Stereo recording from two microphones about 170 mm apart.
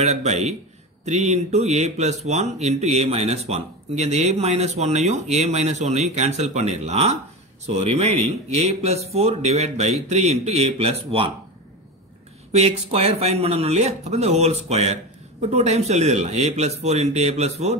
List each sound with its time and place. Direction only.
0.0 s speech: 40° right (ahead or behind)
12.5 s speech: 40° right (ahead or behind)